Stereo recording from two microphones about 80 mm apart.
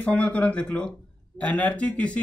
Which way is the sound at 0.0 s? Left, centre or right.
Centre.